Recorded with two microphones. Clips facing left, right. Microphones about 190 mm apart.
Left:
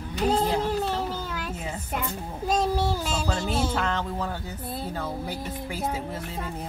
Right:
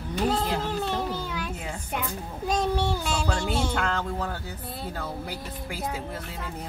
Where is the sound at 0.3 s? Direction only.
40° left (ahead or behind).